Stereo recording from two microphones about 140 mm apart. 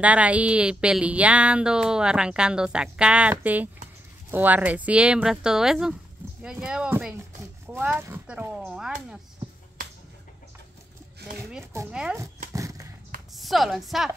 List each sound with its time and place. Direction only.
0.0 s speech: 10° right (ahead or behind)
11.9 s speech: 5° right (ahead or behind)
12.5 s a sound: 25° right (ahead or behind)
13.3 s speech: centre (ahead or behind)